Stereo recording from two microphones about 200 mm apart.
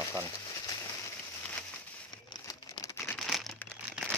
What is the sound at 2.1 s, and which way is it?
Crumpling, 20° left (ahead or behind).